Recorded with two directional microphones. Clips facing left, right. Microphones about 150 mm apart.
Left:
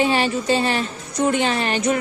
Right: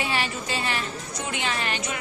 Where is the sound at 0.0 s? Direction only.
30° left (ahead or behind).